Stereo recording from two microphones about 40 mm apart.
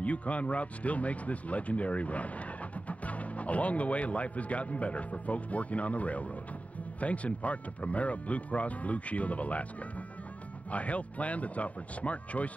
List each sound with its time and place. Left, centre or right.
0.0 s speech: left